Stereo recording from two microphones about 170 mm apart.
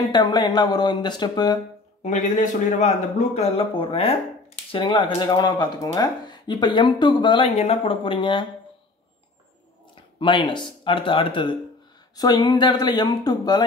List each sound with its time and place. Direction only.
0.1 s speech: 25° left (ahead or behind)
2.0 s a man's voice: 45° left (ahead or behind); by 8.5 s 30° left (ahead or behind)
10.1 s speech: 30° left (ahead or behind)